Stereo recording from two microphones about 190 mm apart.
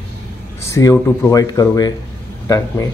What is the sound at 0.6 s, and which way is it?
Speech, 15° left (ahead or behind).